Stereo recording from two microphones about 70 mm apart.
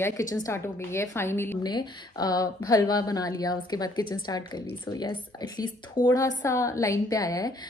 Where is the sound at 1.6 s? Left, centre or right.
Left.